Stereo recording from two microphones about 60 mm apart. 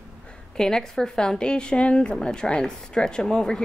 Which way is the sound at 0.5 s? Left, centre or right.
Centre.